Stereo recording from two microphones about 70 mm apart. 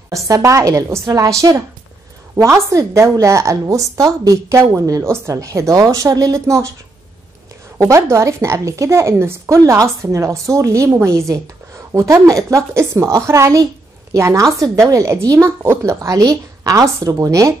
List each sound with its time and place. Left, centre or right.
0.1 s speech: right
7.7 s speech: right
16.2 s a woman's voice: right